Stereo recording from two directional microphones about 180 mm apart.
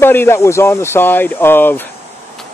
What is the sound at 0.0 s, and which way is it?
Speech, 10° left (ahead or behind).